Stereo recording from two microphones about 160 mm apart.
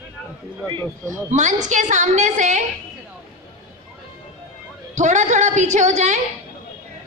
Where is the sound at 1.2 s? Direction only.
50° right (ahead or behind).